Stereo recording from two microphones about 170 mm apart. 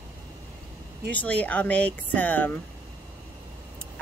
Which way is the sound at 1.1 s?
10° left (ahead or behind).